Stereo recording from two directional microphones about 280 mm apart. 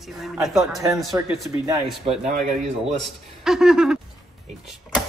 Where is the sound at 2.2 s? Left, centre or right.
Right.